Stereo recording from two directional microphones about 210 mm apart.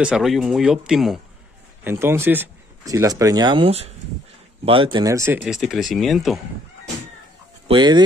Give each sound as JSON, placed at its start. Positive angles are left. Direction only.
{"t": 0.0, "sound": "speech", "side_deg": 0}
{"t": 7.6, "sound": "speech", "side_deg": -20}